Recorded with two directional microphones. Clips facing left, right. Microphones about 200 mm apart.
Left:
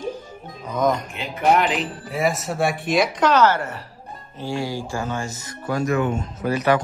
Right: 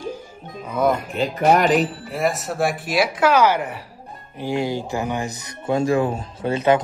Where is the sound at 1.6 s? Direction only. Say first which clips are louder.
Right 5 dB; 45° right (ahead or behind).